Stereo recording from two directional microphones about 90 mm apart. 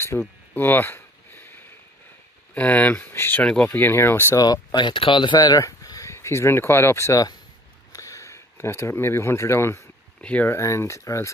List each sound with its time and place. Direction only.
0.1 s speech: 10° left (ahead or behind)
0.6 s a sound: 20° left (ahead or behind)
2.5 s speech: 15° left (ahead or behind)
3.4 s speech: 15° left (ahead or behind)
4.4 s speech: 45° left (ahead or behind); by 9.8 s 30° left (ahead or behind)
10.2 s speech: 15° left (ahead or behind)
10.5 s speech: 35° left (ahead or behind)